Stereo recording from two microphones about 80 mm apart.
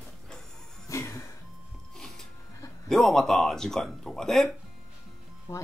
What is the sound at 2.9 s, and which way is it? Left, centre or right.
Speech, centre.